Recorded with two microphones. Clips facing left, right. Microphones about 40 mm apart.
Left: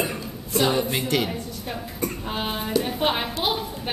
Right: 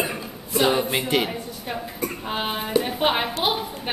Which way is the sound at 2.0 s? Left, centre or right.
Centre.